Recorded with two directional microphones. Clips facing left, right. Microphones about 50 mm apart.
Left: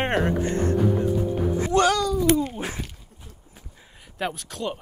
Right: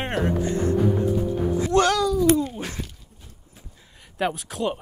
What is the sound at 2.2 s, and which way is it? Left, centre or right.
Speech, left.